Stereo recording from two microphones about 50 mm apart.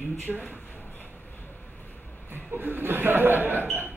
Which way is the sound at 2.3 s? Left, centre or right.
Right.